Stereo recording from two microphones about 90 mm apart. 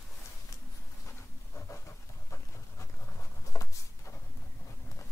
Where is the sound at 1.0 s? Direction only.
30° left (ahead or behind).